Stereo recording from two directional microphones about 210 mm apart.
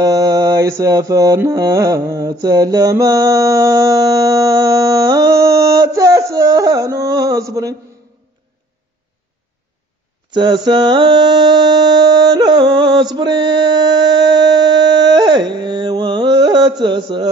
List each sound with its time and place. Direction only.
0.0 s mantra: 20° right (ahead or behind)
10.3 s mantra: 20° right (ahead or behind)